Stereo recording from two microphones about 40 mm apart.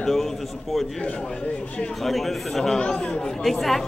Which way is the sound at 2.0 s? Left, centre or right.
Centre.